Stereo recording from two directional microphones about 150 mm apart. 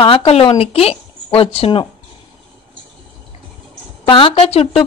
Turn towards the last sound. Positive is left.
turn(degrees=40)  # may be behind; listen again after turning